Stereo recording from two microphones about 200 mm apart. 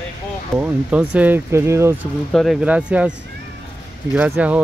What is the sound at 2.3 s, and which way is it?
Speech, centre (ahead or behind).